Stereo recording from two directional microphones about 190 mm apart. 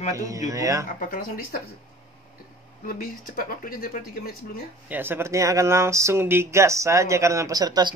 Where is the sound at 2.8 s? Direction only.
45° left (ahead or behind).